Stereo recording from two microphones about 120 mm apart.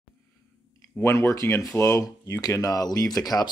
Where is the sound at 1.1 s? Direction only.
25° left (ahead or behind).